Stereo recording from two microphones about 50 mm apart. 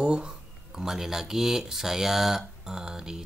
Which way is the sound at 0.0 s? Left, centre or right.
Centre.